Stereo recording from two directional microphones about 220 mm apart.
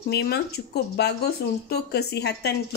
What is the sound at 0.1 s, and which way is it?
Speech, 45° left (ahead or behind).